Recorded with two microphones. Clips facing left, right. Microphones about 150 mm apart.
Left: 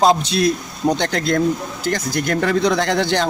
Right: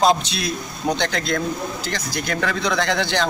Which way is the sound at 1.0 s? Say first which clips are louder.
Left 4 dB; 45° left (ahead or behind).